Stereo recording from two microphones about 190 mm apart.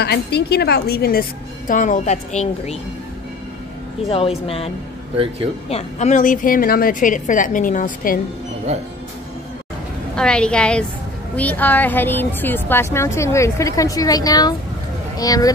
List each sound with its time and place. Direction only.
0.0 s a woman's voice: 60° left (ahead or behind)
1.7 s a woman's voice: 40° left (ahead or behind)
4.1 s a woman's voice: 30° left (ahead or behind)
5.1 s speech: 30° right (ahead or behind)
5.7 s a woman's voice: 35° left (ahead or behind)
8.7 s speech: 35° right (ahead or behind)
10.1 s a woman's voice: 5° left (ahead or behind)